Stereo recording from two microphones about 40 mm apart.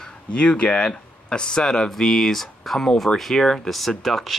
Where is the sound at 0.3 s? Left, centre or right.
Left.